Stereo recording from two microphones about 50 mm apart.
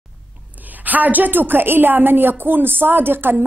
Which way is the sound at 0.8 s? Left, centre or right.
Right.